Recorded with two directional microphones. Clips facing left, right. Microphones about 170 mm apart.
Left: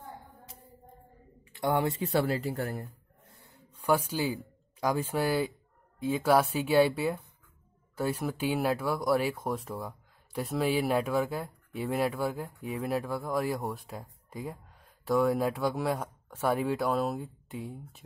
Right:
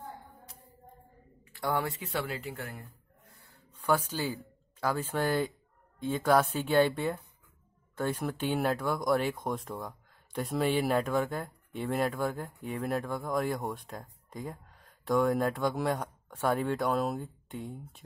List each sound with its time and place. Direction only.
1.5 s speech: 20° left (ahead or behind)
2.0 s speech: 35° left (ahead or behind)
3.3 s a sound: 20° left (ahead or behind)
3.7 s speech: 10° left (ahead or behind)